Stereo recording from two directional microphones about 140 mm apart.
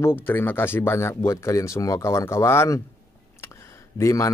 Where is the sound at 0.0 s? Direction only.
15° left (ahead or behind).